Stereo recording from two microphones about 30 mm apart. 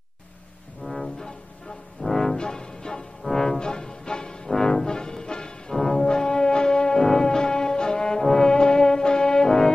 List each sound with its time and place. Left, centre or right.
0.8 s music: centre
2.0 s brass instrument: centre
2.3 s music: left
5.8 s brass instrument: centre